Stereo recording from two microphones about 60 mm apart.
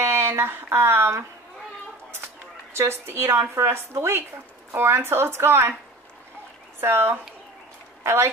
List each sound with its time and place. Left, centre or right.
0.0 s speech: right
2.8 s a woman's voice: right
6.8 s a woman's voice: right